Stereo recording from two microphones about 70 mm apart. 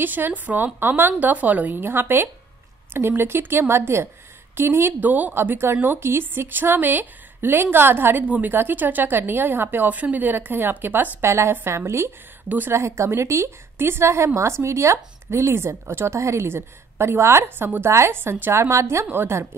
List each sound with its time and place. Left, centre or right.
0.0 s a woman's voice: right
12.4 s speech: right
12.7 s a woman's voice: right